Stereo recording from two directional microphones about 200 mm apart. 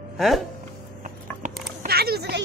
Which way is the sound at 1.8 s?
50° right (ahead or behind).